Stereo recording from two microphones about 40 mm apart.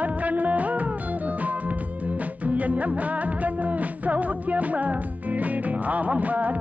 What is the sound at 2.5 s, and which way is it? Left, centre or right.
Music, right.